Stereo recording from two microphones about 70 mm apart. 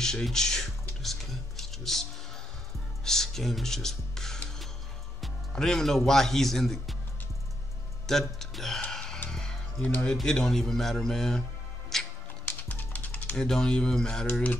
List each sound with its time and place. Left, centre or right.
0.0 s a sound: centre
3.1 s speech: centre
5.5 s a man's voice: centre
8.1 s speech: centre
8.9 s a sound: centre
9.3 s music: centre
9.8 s speech: left
10.1 s a man's voice: centre
11.9 s music: centre
12.4 s typing: left
13.4 s a man's voice: centre
14.2 s speech: left